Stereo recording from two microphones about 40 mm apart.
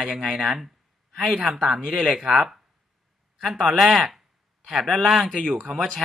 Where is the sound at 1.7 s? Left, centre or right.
Centre.